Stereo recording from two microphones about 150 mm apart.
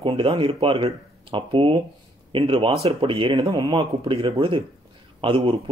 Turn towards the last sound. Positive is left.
turn(degrees=-35)  # may be behind; listen again after turning